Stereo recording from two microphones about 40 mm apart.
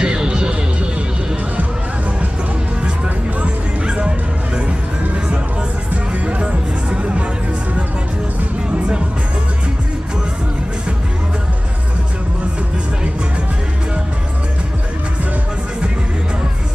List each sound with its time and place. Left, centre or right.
0.0 s music: right
3.3 s music: right
6.1 s music: right
8.7 s music: right